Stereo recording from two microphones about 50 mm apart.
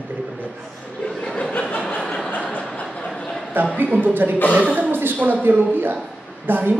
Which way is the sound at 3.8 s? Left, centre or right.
Right.